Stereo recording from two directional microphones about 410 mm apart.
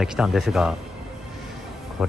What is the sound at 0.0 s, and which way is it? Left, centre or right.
Speech, centre.